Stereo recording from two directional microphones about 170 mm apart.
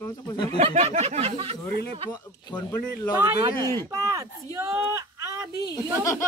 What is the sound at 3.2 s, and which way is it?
Speech, 15° right (ahead or behind).